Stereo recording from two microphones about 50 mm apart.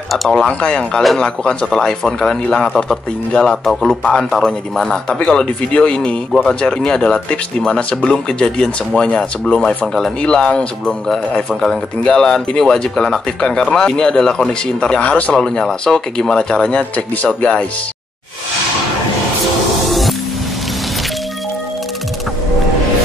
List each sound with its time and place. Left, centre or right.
0.1 s speech: centre
0.5 s a man's voice: left
11.1 s speech: centre; by 15.3 s left
15.3 s speech: centre
16.9 s a man's voice: left
19.9 s music: centre